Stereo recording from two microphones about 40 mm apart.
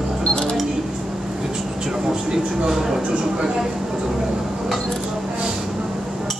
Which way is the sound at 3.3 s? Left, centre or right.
Centre.